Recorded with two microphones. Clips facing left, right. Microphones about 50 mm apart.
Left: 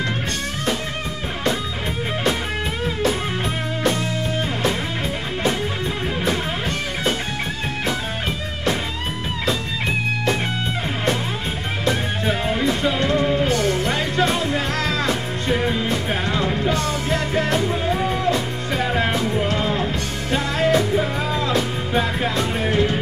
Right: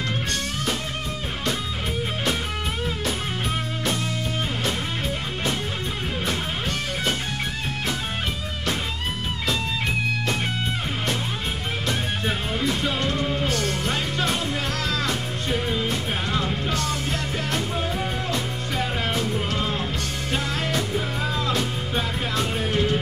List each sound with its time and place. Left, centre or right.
12.4 s music: left
13.9 s music: left
19.4 s music: left